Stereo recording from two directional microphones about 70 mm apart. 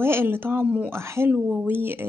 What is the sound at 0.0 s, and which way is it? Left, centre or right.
Speech, right.